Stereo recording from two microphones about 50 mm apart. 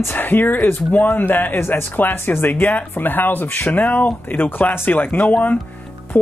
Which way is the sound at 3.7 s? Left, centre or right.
Left.